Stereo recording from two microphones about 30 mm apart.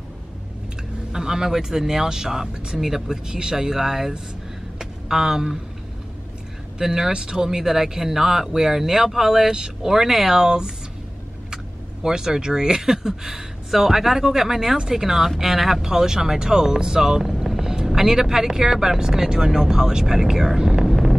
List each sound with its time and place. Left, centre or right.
1.1 s speech: centre
2.8 s speech: centre
4.7 s a sound: centre
6.8 s speech: centre
17.6 s vehicle: right
17.8 s speech: centre
20.8 s a sound: centre